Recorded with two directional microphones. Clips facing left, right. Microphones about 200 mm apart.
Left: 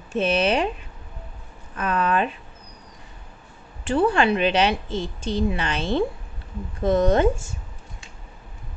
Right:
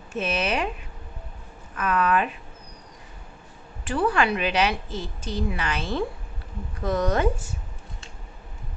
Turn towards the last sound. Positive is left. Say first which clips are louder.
# left 5 dB
turn(degrees=25)  # may be behind; listen again after turning